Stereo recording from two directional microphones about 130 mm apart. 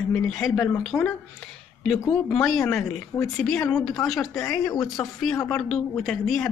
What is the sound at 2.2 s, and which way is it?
Speech, 5° left (ahead or behind).